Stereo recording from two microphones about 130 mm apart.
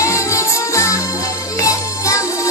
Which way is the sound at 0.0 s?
25° left (ahead or behind).